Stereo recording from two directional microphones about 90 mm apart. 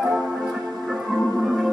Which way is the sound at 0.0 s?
5° right (ahead or behind).